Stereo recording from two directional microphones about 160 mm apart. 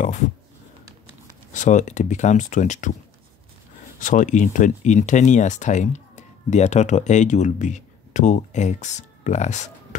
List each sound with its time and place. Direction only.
1.5 s speech: 50° left (ahead or behind)
4.0 s speech: 55° left (ahead or behind)